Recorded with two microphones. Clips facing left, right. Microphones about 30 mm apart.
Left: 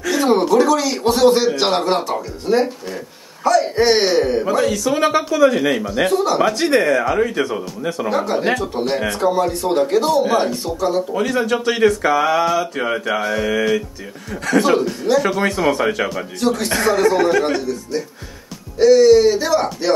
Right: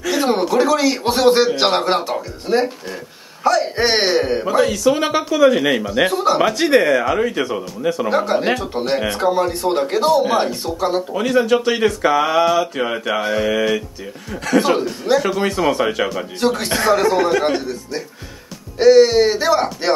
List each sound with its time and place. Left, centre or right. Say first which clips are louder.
0.0 s speech: left 2 dB; centre
11.1 s speech: right 3 dB; centre
16.3 s speech: even; centre